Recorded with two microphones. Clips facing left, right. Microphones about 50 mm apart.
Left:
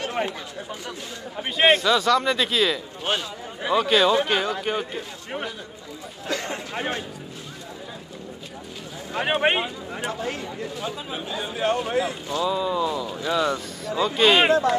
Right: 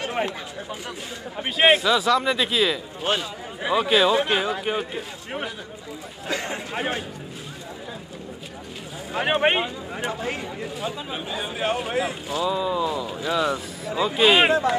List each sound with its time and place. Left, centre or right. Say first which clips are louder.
0.2 s a man's voice: right 1 dB; centre
6.2 s a man's voice: even; centre
9.1 s speech: right 1 dB; centre
10.2 s a man's voice: even; centre
14.5 s a man's voice: left 1 dB; centre